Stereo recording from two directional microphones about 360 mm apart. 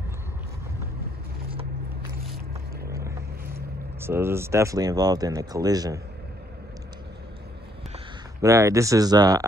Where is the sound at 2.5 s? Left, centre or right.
Right.